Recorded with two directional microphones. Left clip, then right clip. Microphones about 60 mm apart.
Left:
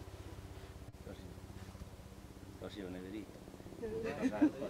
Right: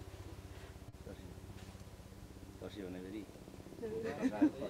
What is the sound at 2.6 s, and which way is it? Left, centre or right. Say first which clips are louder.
Speech: even; centre.